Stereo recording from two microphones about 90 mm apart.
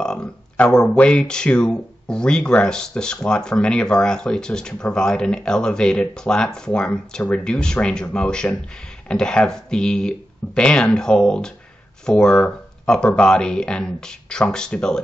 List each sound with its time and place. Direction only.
0.0 s speech: 10° left (ahead or behind)